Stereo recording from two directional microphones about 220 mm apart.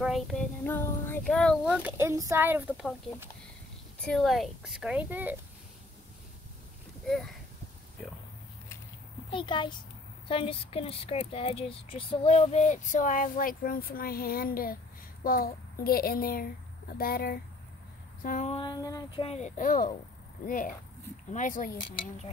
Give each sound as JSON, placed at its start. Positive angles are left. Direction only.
{"t": 0.0, "sound": "speech", "side_deg": 0}
{"t": 2.0, "sound": "a woman's voice", "side_deg": -15}
{"t": 4.0, "sound": "a woman's voice", "side_deg": 0}
{"t": 7.1, "sound": "a woman's voice", "side_deg": 0}
{"t": 9.3, "sound": "speech", "side_deg": 20}
{"t": 18.6, "sound": "speech", "side_deg": 15}